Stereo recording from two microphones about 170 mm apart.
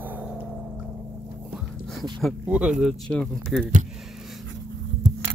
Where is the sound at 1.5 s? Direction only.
Centre (ahead or behind).